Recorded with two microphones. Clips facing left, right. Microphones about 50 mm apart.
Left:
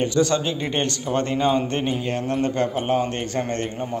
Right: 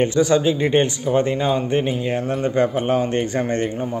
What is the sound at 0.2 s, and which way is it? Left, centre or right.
Speech, centre.